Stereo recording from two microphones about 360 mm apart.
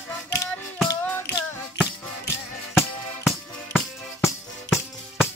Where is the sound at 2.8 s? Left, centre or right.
Centre.